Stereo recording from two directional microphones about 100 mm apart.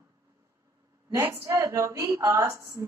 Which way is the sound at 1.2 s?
25° right (ahead or behind).